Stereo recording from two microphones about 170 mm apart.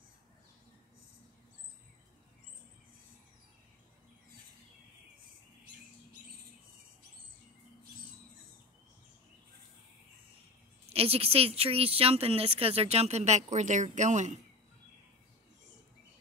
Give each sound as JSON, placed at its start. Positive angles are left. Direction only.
{"t": 10.9, "sound": "a woman's voice", "side_deg": -35}